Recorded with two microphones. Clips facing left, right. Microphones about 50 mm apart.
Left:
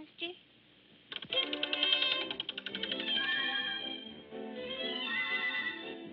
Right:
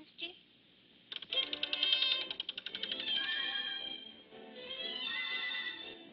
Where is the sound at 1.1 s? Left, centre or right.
Left.